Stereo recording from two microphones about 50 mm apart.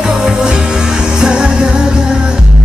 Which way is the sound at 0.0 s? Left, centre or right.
Centre.